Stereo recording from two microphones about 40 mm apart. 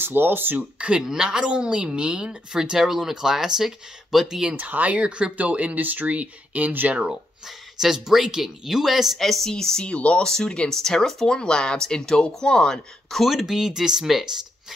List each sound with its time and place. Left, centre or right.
0.0 s speech: right
0.6 s speech: right
1.0 s a woman's voice: centre
2.8 s speech: centre
4.1 s speech: centre
4.6 s speech: right
4.9 s a woman's voice: right
7.1 s speech: centre
9.2 s speech: centre
9.8 s speech: left
10.2 s speech: centre
10.7 s speech: centre
13.2 s speech: centre